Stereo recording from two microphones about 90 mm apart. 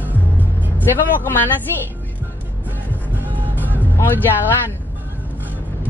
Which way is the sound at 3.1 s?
20° right (ahead or behind).